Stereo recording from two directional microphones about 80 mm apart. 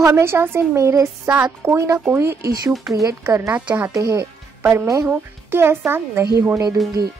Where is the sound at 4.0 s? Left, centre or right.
Right.